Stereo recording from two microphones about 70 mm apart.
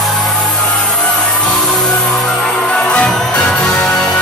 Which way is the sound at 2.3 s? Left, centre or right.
Centre.